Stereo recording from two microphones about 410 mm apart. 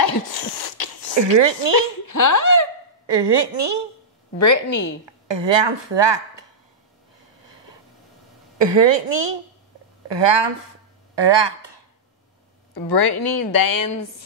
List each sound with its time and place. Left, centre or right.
0.0 s a sound: left
1.4 s a woman's voice: right
1.8 s a woman's voice: left
3.1 s a woman's voice: right
4.4 s speech: left
5.0 s a woman's voice: right
7.4 s vehicle: right
8.5 s a woman's voice: right
11.1 s speech: right
12.9 s speech: left